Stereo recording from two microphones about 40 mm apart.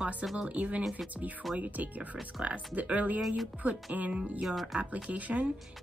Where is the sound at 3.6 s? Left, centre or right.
Right.